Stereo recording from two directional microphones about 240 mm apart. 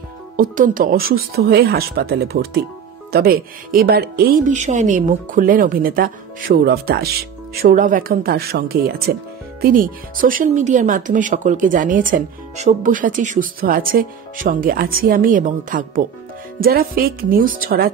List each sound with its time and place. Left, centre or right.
0.4 s speech: right